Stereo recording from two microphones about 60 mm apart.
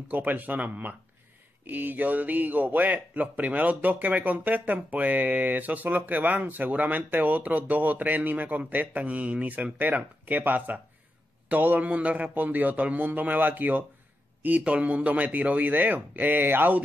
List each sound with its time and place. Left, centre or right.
0.1 s speech: right